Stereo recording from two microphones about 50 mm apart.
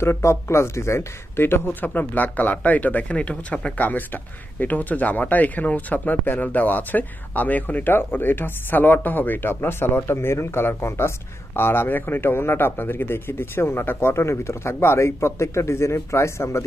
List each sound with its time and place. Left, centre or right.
0.0 s a man's voice: left
11.5 s a man's voice: left